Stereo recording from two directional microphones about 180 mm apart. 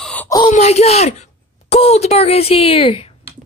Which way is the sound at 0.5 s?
35° left (ahead or behind).